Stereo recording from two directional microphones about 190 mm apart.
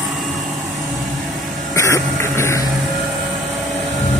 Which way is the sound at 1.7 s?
15° left (ahead or behind).